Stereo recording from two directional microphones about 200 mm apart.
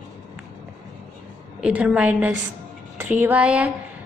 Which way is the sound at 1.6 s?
5° right (ahead or behind).